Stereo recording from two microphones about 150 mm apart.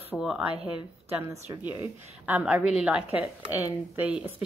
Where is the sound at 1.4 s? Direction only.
15° right (ahead or behind).